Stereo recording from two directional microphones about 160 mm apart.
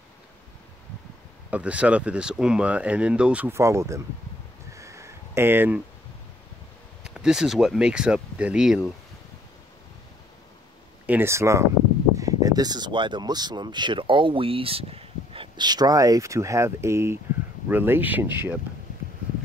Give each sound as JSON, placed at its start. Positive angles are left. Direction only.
{"t": 1.5, "sound": "speech", "side_deg": -10}
{"t": 4.7, "sound": "a sound", "side_deg": -20}
{"t": 7.0, "sound": "speech", "side_deg": -5}
{"t": 11.1, "sound": "speech", "side_deg": -15}